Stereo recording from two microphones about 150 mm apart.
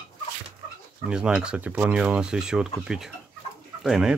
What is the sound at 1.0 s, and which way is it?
Speech, 5° right (ahead or behind).